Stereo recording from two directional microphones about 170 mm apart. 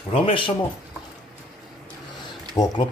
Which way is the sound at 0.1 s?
30° left (ahead or behind).